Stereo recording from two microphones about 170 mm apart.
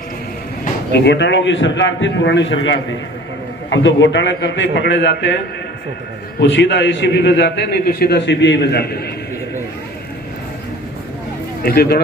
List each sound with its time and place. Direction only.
1.0 s a man's voice: 90° left
3.7 s a man's voice: 90° left
6.4 s a man's voice: 90° left; by 9.0 s 70° left (ahead or behind)
11.6 s speech: 70° left (ahead or behind)